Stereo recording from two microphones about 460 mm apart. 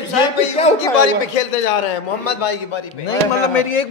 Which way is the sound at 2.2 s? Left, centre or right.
Left.